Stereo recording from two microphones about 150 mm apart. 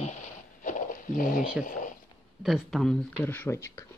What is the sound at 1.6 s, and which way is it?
Speech, 60° left (ahead or behind).